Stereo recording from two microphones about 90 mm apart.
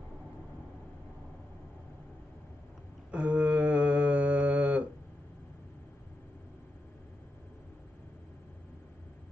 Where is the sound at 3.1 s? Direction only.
15° right (ahead or behind).